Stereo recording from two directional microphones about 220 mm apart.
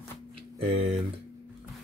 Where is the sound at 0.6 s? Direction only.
25° right (ahead or behind).